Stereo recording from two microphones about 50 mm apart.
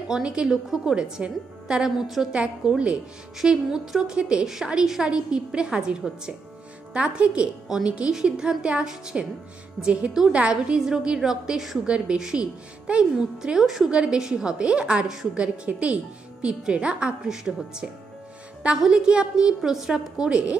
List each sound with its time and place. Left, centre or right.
0.1 s a woman's voice: centre
11.8 s a woman's voice: centre